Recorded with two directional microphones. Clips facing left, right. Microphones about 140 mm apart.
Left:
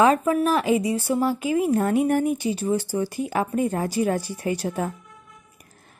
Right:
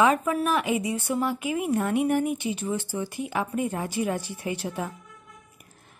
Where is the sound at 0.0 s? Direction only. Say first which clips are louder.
Left 4 dB; 35° left (ahead or behind).